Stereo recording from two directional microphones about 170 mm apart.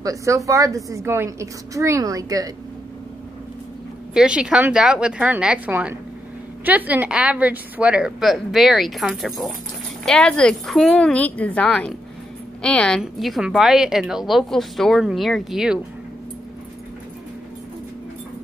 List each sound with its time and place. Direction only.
0.0 s a woman's voice: 20° right (ahead or behind)
4.1 s a woman's voice: 5° right (ahead or behind)